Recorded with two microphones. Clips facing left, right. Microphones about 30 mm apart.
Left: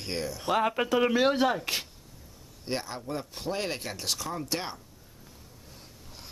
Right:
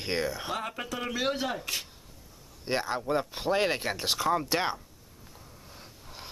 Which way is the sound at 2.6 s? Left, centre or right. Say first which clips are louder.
Right 4 dB; centre.